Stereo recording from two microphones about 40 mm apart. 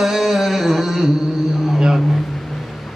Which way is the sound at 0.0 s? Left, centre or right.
Centre.